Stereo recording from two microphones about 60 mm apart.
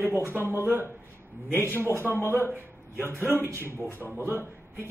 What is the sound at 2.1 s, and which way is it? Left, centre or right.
Speech, left.